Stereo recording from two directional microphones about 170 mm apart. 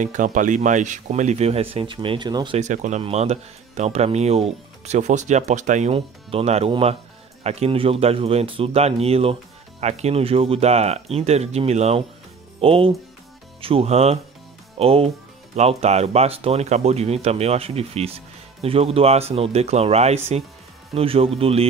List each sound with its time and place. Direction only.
0.0 s speech: 45° right (ahead or behind); by 2.6 s 25° right (ahead or behind)
2.6 s speech: 45° right (ahead or behind)